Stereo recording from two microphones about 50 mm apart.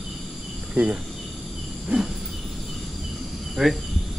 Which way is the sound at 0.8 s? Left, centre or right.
Right.